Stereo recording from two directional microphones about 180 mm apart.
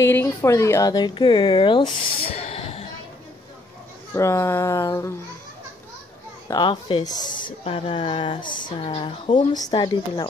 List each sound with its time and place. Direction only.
0.0 s speech: 15° left (ahead or behind); by 2.2 s 30° left (ahead or behind)
2.3 s a sound: 35° left (ahead or behind)
4.1 s speech: 15° left (ahead or behind)
6.5 s speech: 25° left (ahead or behind)